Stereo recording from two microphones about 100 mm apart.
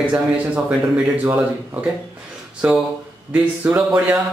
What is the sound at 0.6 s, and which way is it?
Speech, 15° right (ahead or behind).